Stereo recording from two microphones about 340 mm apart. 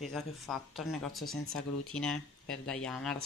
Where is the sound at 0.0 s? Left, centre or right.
Centre.